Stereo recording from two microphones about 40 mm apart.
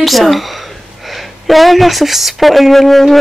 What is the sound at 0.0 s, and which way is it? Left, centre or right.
A woman's voice, centre.